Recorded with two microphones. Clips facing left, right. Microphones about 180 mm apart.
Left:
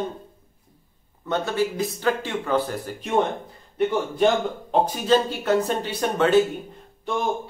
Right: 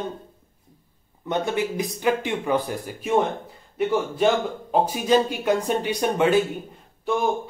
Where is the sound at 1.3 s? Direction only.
15° right (ahead or behind).